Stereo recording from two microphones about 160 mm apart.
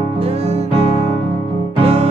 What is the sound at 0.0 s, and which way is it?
Music, 40° right (ahead or behind).